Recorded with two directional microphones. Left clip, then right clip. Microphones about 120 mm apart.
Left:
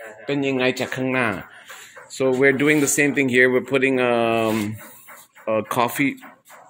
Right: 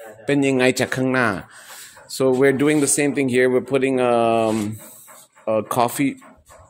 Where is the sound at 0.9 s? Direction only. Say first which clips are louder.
Right 2 dB; 45° right (ahead or behind).